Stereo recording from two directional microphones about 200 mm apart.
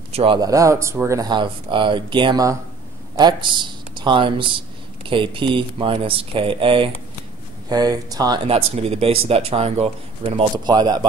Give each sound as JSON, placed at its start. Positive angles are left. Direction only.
{"t": 0.1, "sound": "speech", "side_deg": -25}
{"t": 8.5, "sound": "speech", "side_deg": -30}